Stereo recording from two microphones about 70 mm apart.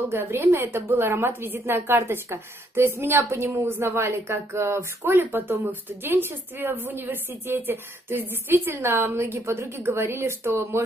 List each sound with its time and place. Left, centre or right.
0.1 s a woman's voice: right